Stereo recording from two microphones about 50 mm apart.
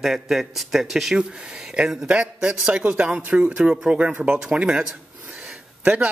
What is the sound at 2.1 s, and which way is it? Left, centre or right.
Speech, right.